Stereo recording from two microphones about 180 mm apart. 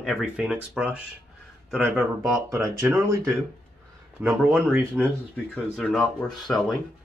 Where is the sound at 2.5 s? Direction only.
15° right (ahead or behind).